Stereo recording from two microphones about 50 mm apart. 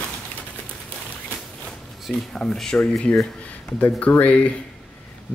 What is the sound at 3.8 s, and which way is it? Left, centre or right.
Speech, left.